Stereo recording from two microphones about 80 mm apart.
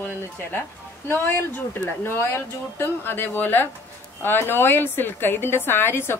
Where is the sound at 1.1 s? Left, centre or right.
Left.